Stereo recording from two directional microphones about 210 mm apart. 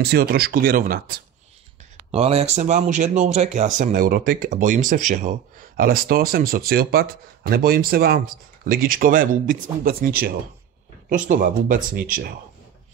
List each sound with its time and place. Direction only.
0.0 s speech: 50° right (ahead or behind)
2.0 s speech: 30° right (ahead or behind)